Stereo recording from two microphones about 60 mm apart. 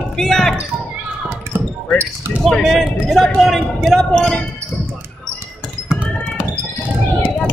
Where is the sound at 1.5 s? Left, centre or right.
Right.